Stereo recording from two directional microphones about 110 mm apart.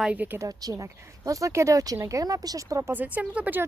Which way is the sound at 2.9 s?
15° right (ahead or behind).